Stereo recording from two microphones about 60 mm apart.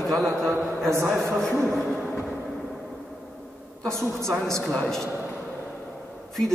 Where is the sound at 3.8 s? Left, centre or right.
Centre.